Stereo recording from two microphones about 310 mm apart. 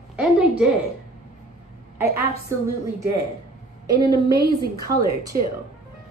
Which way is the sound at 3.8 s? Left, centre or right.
Centre.